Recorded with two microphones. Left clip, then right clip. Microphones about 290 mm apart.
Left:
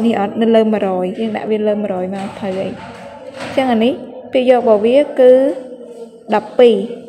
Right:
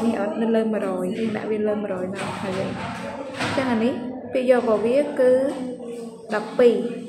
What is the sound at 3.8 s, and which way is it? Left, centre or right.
A woman's voice, left.